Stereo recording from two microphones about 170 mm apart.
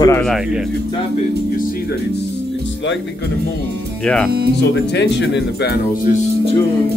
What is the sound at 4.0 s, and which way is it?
Speech, 5° left (ahead or behind).